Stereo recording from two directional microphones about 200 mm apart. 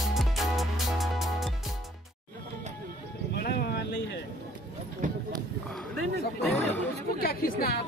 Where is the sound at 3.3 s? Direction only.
55° left (ahead or behind).